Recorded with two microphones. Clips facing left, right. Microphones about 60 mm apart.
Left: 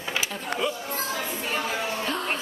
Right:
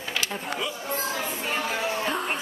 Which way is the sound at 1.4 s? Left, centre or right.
Centre.